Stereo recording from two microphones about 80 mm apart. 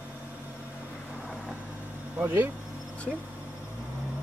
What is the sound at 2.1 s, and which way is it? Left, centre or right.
Speech, right.